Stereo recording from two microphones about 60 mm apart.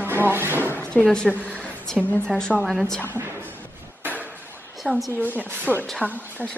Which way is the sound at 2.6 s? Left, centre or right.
Centre.